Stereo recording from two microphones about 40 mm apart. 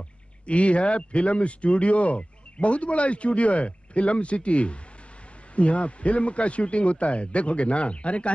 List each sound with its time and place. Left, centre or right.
0.5 s speech: left